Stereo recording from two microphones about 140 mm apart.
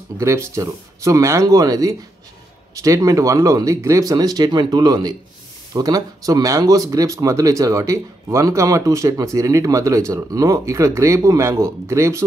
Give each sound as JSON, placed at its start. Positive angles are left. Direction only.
{"t": 0.2, "sound": "speech", "side_deg": -20}